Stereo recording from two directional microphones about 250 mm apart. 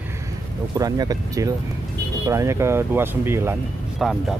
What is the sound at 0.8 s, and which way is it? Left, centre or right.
Speech, centre.